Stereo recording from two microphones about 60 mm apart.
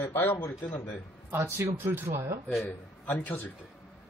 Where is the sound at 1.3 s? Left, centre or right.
Right.